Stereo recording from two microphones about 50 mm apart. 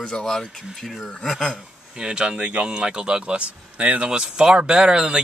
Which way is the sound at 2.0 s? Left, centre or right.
Centre.